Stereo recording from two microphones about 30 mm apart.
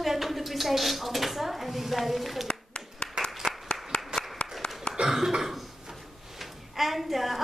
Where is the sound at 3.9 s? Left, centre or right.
Left.